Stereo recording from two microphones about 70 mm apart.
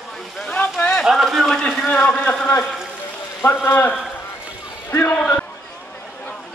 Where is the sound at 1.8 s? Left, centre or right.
Centre.